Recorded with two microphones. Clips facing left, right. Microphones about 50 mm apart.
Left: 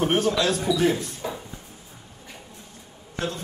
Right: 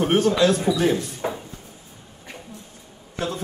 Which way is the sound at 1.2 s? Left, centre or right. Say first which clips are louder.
Right 5 dB; right.